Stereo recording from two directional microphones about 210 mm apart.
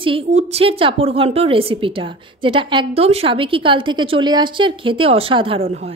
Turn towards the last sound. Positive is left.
turn(degrees=-25)  # may be behind; listen again after turning